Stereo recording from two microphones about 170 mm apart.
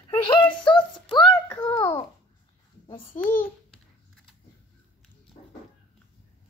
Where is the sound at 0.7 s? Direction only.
30° left (ahead or behind).